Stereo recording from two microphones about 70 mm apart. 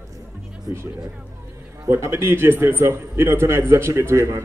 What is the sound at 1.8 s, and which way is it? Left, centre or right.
A man's voice, right.